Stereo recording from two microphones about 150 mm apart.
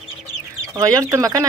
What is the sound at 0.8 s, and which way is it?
Speech, 20° right (ahead or behind).